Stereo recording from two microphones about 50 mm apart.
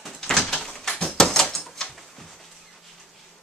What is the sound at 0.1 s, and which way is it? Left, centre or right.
Door, centre.